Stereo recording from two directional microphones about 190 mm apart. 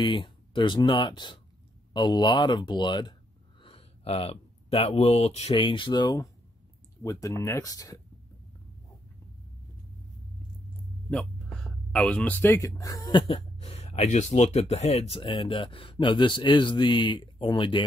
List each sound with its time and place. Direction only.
0.0 s speech: 25° left (ahead or behind)
11.1 s speech: 5° left (ahead or behind); by 17.8 s 25° left (ahead or behind)